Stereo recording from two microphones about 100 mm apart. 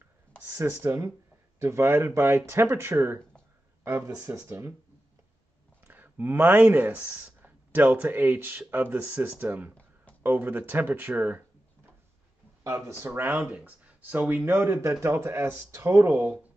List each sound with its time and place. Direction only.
0.5 s speech: 25° right (ahead or behind)
5.9 s speech: 20° right (ahead or behind)
12.6 s speech: 30° right (ahead or behind)
13.0 s speech: 20° right (ahead or behind)